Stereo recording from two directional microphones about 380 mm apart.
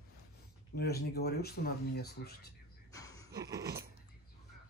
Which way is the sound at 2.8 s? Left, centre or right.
Centre.